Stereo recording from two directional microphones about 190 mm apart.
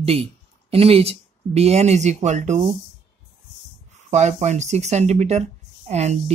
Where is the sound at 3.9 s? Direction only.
35° right (ahead or behind).